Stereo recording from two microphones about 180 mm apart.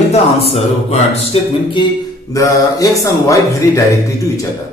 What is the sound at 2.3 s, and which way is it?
A man's voice, 15° left (ahead or behind).